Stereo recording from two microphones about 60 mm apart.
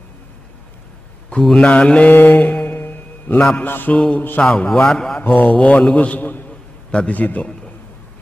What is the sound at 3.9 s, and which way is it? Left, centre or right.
Speech, left.